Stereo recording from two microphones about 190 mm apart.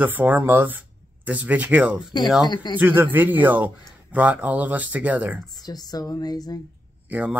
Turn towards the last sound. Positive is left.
turn(degrees=-10)  # may be behind; listen again after turning